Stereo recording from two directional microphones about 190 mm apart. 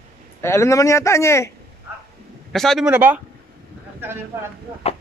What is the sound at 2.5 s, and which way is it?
Speech, centre (ahead or behind).